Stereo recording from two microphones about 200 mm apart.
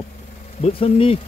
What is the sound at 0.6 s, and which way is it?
Speech, 30° left (ahead or behind).